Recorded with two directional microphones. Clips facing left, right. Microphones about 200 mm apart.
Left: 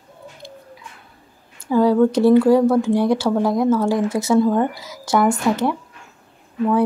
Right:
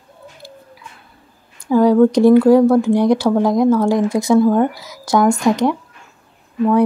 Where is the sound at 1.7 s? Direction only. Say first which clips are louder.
Right 3 dB; 15° right (ahead or behind).